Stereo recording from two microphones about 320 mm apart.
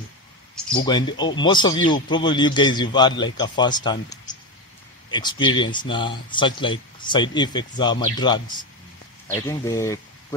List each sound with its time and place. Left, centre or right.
0.8 s speech: centre